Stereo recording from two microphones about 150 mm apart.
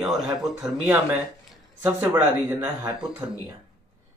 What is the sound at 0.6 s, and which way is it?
A man's voice, 20° right (ahead or behind).